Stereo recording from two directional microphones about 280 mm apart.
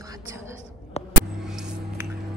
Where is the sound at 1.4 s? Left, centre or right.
Centre.